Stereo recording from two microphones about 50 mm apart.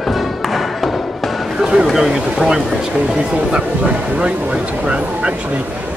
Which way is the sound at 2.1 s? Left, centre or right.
Centre.